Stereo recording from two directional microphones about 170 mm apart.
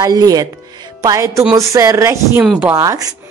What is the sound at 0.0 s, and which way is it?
A woman's voice, 20° right (ahead or behind).